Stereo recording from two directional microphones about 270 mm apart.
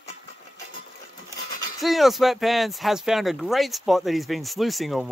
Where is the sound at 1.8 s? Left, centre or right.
Centre.